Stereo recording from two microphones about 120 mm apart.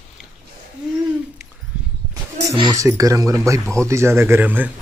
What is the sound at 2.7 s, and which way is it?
Speech, 25° right (ahead or behind).